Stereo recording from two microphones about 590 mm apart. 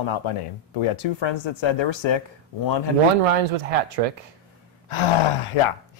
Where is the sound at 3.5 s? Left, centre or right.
Right.